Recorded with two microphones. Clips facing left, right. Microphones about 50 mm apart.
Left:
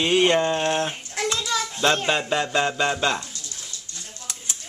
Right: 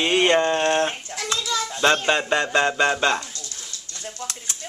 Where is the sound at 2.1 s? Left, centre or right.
Centre.